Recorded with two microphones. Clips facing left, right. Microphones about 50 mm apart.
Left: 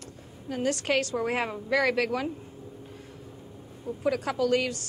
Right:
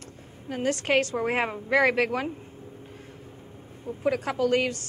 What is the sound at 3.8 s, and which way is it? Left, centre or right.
A woman's voice, right.